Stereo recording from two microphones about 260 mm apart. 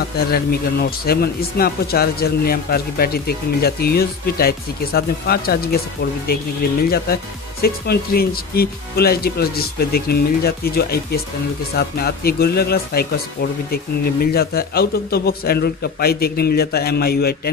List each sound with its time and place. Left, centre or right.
0.3 s speech: left
7.6 s speech: left